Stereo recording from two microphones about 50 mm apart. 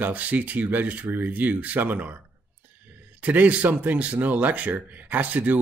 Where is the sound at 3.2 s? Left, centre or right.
Right.